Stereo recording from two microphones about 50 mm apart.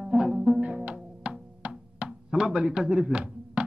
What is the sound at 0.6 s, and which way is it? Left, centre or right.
Music, right.